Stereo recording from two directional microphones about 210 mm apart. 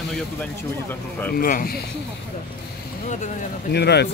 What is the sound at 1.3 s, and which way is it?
Speech, 45° left (ahead or behind).